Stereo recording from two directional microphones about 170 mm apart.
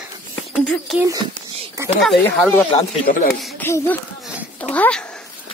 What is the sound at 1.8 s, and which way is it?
Speech, 15° right (ahead or behind).